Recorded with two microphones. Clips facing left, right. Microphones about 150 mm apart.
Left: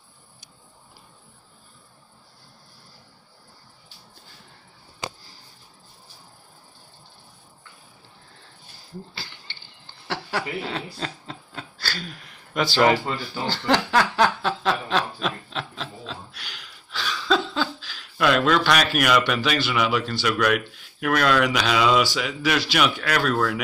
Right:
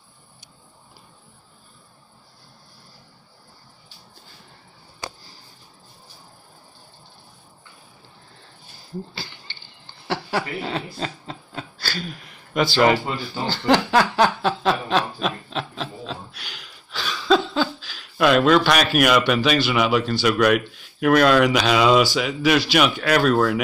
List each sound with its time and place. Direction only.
10.7 s a sound: 15° right (ahead or behind)
12.5 s a man's voice: 5° right (ahead or behind)
13.5 s snicker: 15° right (ahead or behind)
21.0 s speech: 20° right (ahead or behind)